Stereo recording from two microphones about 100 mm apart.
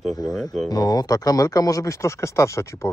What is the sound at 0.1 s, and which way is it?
Speech, 30° left (ahead or behind).